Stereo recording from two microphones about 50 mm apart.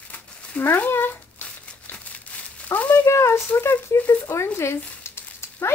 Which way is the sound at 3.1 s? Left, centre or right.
Left.